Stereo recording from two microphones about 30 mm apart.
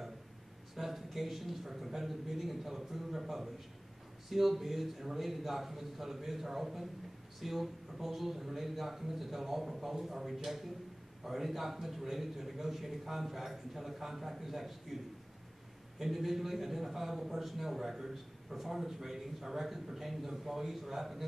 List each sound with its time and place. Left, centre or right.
0.7 s a man's voice: centre
16.0 s a man's voice: centre